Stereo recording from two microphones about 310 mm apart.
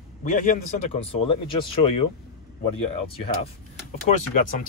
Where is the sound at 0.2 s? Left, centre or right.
Left.